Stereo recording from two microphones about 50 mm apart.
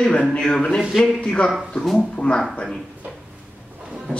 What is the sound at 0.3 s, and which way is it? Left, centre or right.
Speech, left.